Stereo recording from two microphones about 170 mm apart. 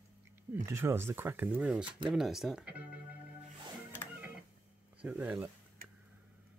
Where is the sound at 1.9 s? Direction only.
30° right (ahead or behind).